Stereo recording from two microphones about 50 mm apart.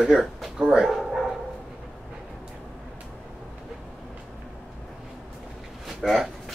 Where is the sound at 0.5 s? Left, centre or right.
Centre.